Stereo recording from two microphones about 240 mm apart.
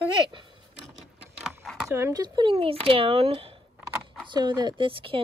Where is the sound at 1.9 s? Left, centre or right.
Centre.